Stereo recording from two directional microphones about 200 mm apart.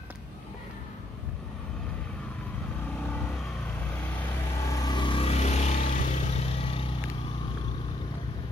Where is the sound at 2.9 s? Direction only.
10° left (ahead or behind).